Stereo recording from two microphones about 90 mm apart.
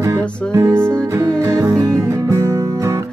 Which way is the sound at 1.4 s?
30° right (ahead or behind).